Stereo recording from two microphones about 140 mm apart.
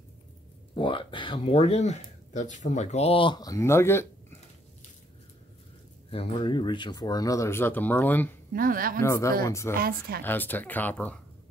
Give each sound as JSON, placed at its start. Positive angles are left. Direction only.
{"t": 0.7, "sound": "speech", "side_deg": 35}
{"t": 6.0, "sound": "speech", "side_deg": 40}
{"t": 8.5, "sound": "a woman's voice", "side_deg": -85}
{"t": 9.0, "sound": "speech", "side_deg": 20}
{"t": 9.8, "sound": "speech", "side_deg": -90}
{"t": 10.2, "sound": "speech", "side_deg": 15}